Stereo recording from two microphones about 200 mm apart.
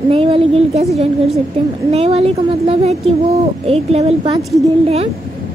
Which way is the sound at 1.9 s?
30° right (ahead or behind).